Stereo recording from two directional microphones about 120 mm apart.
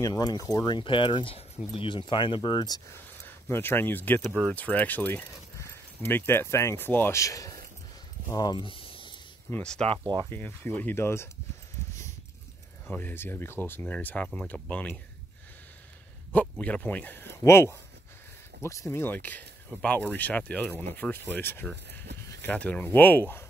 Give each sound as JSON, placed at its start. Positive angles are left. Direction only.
{"t": 0.0, "sound": "speech", "side_deg": 35}
{"t": 2.9, "sound": "speech", "side_deg": 20}
{"t": 9.5, "sound": "speech", "side_deg": 10}
{"t": 12.9, "sound": "speech", "side_deg": 15}
{"t": 16.3, "sound": "speech", "side_deg": 10}